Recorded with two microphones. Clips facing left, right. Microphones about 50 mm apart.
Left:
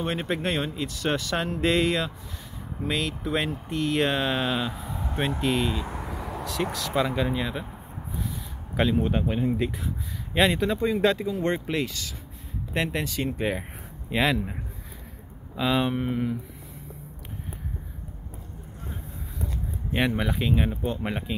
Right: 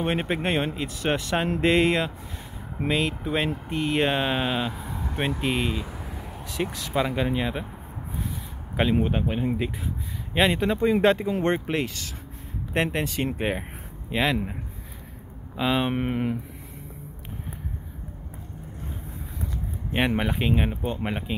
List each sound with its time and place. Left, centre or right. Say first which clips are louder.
0.0 s speech: right 2 dB; right
3.3 s speech: left 2 dB; centre
3.6 s speech: even; right
5.9 s vehicle: left 4 dB; left
6.4 s speech: even; centre
6.9 s speech: even; centre
7.2 s speech: right 1 dB; right
9.0 s speech: even; centre
10.6 s speech: right 2 dB; right
14.1 s speech: even; centre
15.5 s speech: even; right
15.9 s speech: right 1 dB; right
20.2 s speech: right 1 dB; right